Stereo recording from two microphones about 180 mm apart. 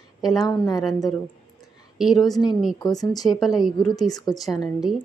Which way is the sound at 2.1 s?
20° left (ahead or behind).